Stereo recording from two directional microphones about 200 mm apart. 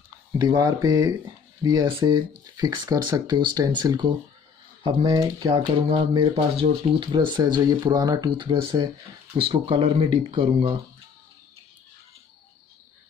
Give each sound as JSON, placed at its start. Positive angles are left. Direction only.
{"t": 0.4, "sound": "speech", "side_deg": -20}